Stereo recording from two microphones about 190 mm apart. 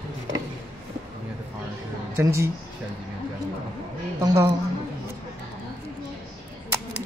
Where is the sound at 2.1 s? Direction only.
15° right (ahead or behind).